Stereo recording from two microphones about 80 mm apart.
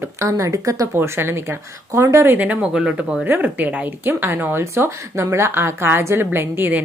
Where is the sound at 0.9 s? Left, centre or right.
Right.